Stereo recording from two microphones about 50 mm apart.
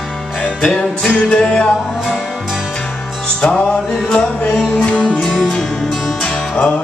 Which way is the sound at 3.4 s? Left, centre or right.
Centre.